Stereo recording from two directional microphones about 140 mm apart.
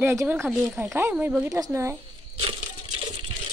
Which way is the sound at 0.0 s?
20° right (ahead or behind).